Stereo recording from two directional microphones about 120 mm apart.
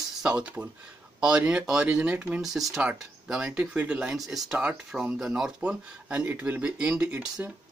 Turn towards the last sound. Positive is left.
turn(degrees=-10)  # may be behind; listen again after turning